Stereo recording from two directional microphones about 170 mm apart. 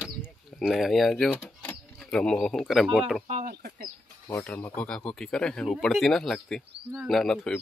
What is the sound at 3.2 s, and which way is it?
Speech, 50° right (ahead or behind).